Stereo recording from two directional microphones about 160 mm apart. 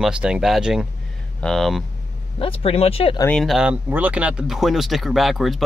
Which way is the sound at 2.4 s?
40° left (ahead or behind).